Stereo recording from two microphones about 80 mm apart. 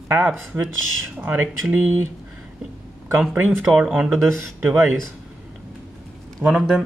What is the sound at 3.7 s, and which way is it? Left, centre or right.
Speech, centre.